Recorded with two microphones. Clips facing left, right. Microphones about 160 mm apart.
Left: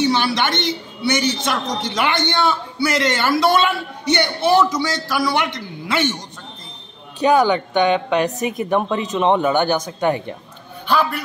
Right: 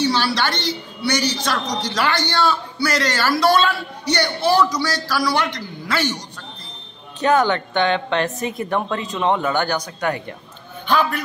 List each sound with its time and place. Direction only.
0.0 s a man's voice: 20° left (ahead or behind)
7.2 s a woman's voice: 15° left (ahead or behind)
10.9 s a man's voice: 5° left (ahead or behind)